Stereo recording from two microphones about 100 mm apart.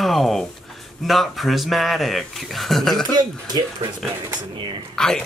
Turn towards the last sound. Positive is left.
turn(degrees=5)  # may be behind; listen again after turning